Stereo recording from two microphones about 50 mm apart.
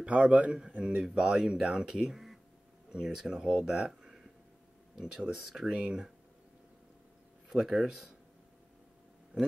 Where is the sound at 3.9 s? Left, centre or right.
Centre.